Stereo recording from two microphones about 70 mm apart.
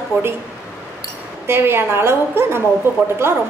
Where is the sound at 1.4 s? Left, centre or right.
Right.